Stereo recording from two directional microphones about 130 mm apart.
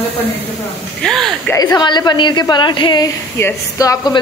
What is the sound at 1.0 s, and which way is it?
Speech, centre (ahead or behind).